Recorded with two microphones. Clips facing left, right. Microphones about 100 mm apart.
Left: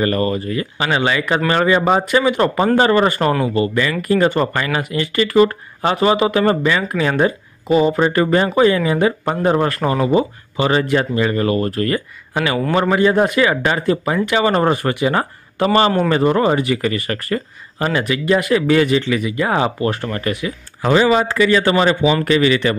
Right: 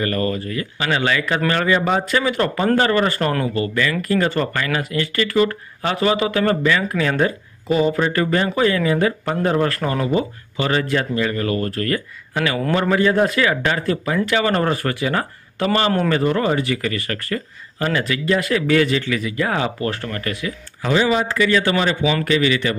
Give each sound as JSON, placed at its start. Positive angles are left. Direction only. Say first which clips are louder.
{"t": 0.0, "sound": "speech", "louder": "left 4 dB", "side_deg": 25}
{"t": 20.8, "sound": "a man's voice", "louder": "left 4 dB", "side_deg": 40}
{"t": 21.3, "sound": "a man's voice", "louder": "left 3 dB", "side_deg": 30}